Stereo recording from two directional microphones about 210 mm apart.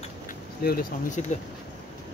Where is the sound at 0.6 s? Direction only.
45° left (ahead or behind).